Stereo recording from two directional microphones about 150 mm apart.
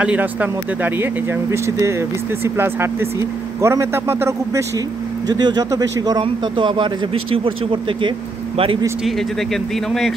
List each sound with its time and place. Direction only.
0.0 s speech: 10° right (ahead or behind)
5.3 s speech: 30° right (ahead or behind)
9.0 s speech: centre (ahead or behind)